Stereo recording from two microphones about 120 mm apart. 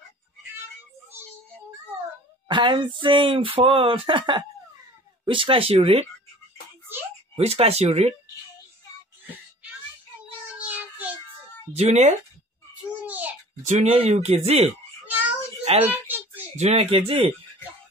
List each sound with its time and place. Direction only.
2.4 s speech: 40° right (ahead or behind); by 6.0 s 60° right (ahead or behind)
7.3 s speech: 55° right (ahead or behind)
10.6 s child singing: 10° right (ahead or behind)
11.7 s speech: 65° right (ahead or behind)
13.0 s babbling: 15° right (ahead or behind)
13.6 s speech: 75° right (ahead or behind)
13.9 s speech: 65° right (ahead or behind)
15.6 s a sound: 60° right (ahead or behind)
15.9 s a sound: 15° right (ahead or behind)
16.5 s speech: 60° right (ahead or behind)